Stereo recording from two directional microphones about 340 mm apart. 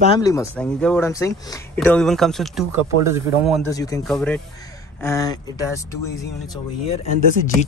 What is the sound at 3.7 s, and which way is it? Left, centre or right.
Speech, centre.